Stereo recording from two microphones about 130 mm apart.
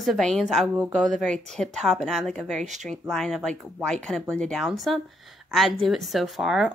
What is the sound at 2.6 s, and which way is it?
Speech, 65° right (ahead or behind).